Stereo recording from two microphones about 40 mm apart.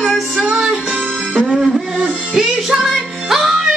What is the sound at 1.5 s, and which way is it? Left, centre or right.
Music, centre.